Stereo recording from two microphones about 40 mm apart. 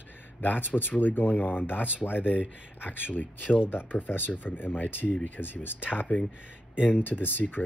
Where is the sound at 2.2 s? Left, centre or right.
Right.